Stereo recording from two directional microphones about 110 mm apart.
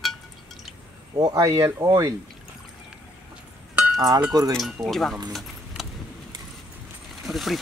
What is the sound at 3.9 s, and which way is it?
Speech, 35° right (ahead or behind).